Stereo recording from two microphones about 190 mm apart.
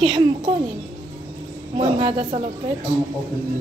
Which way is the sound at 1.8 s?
30° right (ahead or behind).